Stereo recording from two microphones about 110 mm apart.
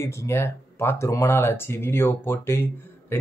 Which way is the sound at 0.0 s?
25° left (ahead or behind).